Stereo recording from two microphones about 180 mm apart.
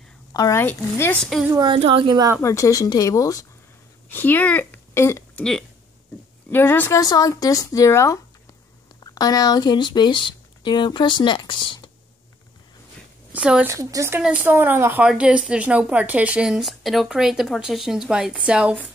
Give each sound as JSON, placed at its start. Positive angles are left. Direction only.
{"t": 0.3, "sound": "a woman's voice", "side_deg": 20}
{"t": 1.5, "sound": "a woman's voice", "side_deg": -25}
{"t": 2.4, "sound": "speech", "side_deg": 15}
{"t": 5.4, "sound": "a woman's voice", "side_deg": 5}
{"t": 13.3, "sound": "a woman's voice", "side_deg": -5}